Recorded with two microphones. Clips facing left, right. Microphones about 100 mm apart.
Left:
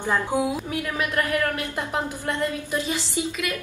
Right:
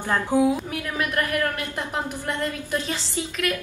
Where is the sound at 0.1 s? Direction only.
15° left (ahead or behind).